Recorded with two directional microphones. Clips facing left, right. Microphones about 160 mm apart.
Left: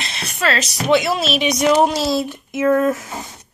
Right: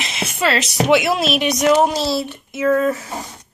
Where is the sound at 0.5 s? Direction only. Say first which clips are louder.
Right 1 dB; 60° right (ahead or behind).